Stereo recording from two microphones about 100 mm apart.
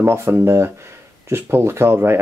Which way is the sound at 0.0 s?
25° right (ahead or behind).